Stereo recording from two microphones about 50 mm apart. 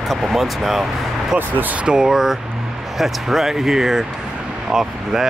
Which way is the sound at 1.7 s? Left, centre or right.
Centre.